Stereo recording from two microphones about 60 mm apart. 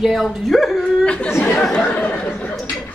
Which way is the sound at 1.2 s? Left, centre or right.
Left.